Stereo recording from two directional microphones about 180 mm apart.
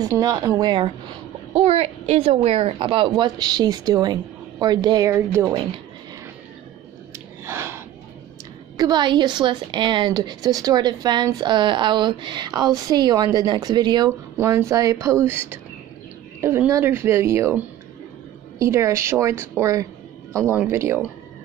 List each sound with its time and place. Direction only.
0.0 s a woman's voice: 20° right (ahead or behind)
7.4 s a sound: 15° right (ahead or behind)
8.7 s a woman's voice: 25° right (ahead or behind)